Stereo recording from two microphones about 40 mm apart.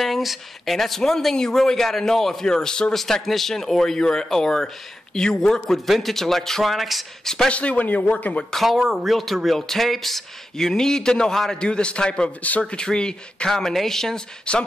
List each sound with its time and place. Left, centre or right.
0.0 s speech: centre
2.9 s speech: centre
7.4 s speech: left
8.7 s speech: centre
11.6 s speech: left
13.5 s speech: centre
14.5 s speech: left